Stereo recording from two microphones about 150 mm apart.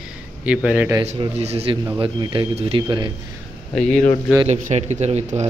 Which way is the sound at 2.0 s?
35° right (ahead or behind).